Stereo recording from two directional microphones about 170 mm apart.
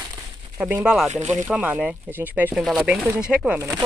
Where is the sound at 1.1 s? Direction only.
45° right (ahead or behind).